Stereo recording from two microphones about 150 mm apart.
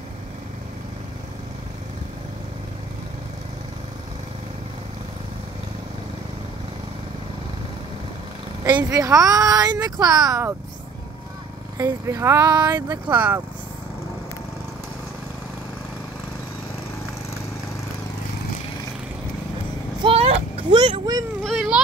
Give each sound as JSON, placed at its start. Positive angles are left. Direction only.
{"t": 8.6, "sound": "speech", "side_deg": -25}
{"t": 11.8, "sound": "speech", "side_deg": -20}
{"t": 13.1, "sound": "speech", "side_deg": -10}
{"t": 20.0, "sound": "vehicle", "side_deg": -40}
{"t": 21.4, "sound": "a sound", "side_deg": 0}